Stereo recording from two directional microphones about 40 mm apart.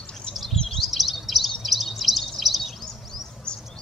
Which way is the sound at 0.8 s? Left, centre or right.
Centre.